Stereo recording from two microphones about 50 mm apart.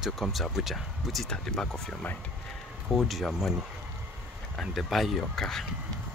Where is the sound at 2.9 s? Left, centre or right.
Centre.